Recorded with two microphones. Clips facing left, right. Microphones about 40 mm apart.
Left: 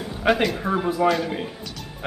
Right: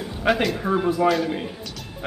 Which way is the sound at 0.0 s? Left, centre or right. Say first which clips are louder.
Left 1 dB; centre.